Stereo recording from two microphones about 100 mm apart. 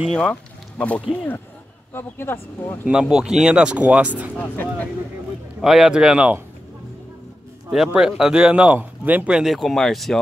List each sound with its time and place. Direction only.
0.1 s speech: 10° left (ahead or behind)
2.8 s speech: 10° right (ahead or behind)
4.4 s speech: 15° left (ahead or behind)
5.6 s speech: 5° right (ahead or behind)
7.7 s speech: 5° right (ahead or behind)
9.4 s speech: centre (ahead or behind)